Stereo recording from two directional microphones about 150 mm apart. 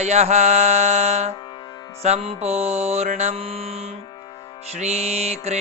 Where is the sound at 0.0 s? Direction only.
45° right (ahead or behind).